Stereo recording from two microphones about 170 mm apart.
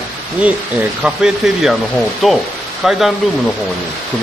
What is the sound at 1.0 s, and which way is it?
Speech, 5° right (ahead or behind).